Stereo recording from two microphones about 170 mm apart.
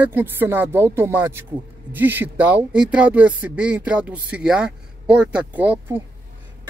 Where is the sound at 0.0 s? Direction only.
10° right (ahead or behind).